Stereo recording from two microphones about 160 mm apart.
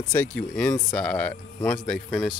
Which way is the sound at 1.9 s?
Centre (ahead or behind).